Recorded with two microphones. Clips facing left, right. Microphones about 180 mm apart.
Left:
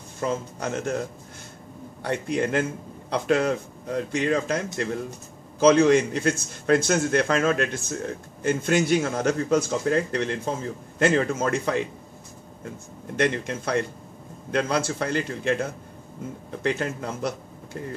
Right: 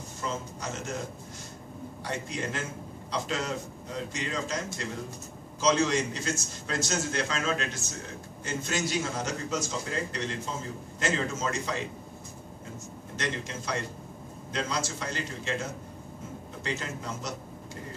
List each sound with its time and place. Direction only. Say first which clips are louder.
0.2 s a man's voice: left 8 dB; 55° left (ahead or behind)
2.0 s a man's voice: left 9 dB; 60° left (ahead or behind)
13.1 s a man's voice: left 10 dB; 55° left (ahead or behind)